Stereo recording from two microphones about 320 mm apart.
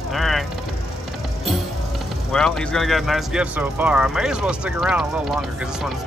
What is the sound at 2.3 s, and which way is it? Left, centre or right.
Speech, centre.